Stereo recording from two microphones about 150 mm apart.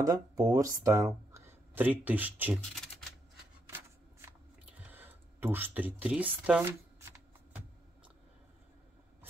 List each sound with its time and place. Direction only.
0.0 s speech: 20° right (ahead or behind)
3.6 s shuffling cards: 15° right (ahead or behind)
4.9 s speech: 15° right (ahead or behind)